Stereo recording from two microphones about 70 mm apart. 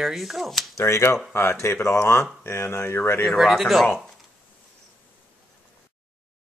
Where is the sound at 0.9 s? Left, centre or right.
Left.